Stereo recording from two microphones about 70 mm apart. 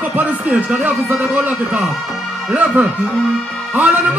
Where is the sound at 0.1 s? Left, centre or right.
Right.